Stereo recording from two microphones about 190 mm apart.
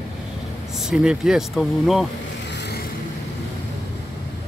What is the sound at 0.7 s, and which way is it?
Speech, 5° right (ahead or behind).